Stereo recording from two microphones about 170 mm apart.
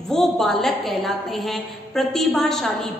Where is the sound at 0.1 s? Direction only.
Centre (ahead or behind).